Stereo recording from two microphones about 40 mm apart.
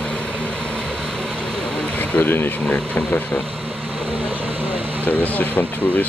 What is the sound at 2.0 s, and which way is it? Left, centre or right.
Speech, left.